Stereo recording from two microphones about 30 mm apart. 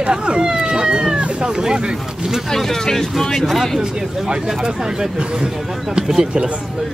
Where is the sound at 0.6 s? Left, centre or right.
Right.